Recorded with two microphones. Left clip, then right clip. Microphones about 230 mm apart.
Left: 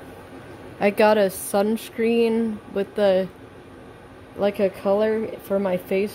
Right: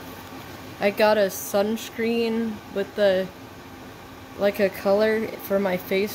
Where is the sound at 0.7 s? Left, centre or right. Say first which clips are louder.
Left 2 dB; left.